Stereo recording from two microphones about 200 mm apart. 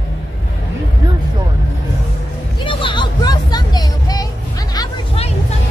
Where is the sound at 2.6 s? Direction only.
25° left (ahead or behind).